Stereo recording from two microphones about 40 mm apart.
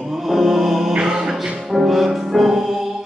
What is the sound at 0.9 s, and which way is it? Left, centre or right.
Music, centre.